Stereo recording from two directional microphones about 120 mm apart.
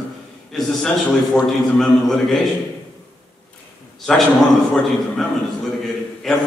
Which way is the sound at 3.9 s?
Centre (ahead or behind).